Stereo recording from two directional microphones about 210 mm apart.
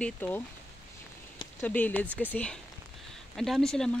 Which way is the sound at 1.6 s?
10° left (ahead or behind).